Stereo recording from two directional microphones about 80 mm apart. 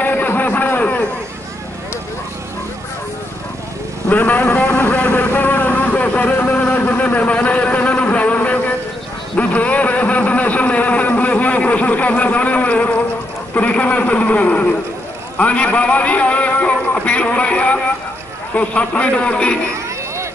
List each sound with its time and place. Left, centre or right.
0.0 s a sound: left
4.1 s vehicle: left
9.4 s a man's voice: centre